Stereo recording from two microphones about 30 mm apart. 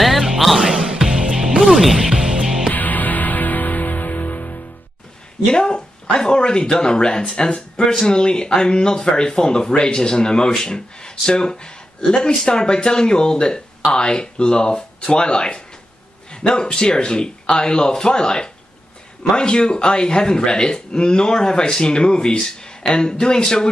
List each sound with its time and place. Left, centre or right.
0.6 s music: right
1.6 s music: centre
2.0 s music: centre
2.7 s music: left
5.5 s speech: left
9.7 s speech: left